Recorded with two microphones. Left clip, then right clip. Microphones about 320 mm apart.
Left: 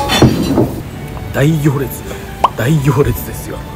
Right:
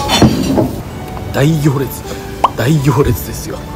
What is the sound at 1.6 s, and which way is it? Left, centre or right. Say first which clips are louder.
Speech: right 1 dB; centre.